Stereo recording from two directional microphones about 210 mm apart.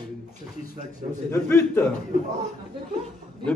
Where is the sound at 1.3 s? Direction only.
10° left (ahead or behind).